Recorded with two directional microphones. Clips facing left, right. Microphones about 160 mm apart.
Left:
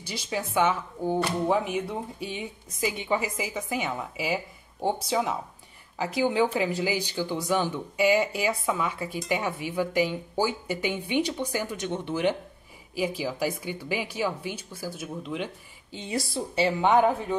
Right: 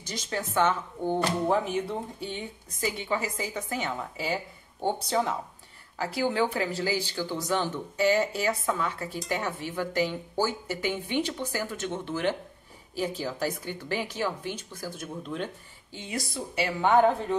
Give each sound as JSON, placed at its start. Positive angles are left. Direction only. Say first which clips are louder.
{"t": 0.0, "sound": "a woman's voice", "louder": "left 1 dB", "side_deg": 10}
{"t": 15.9, "sound": "a woman's voice", "louder": "left 4 dB", "side_deg": 25}